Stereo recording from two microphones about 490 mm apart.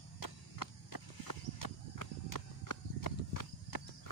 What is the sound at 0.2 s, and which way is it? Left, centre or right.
Clip-clop, left.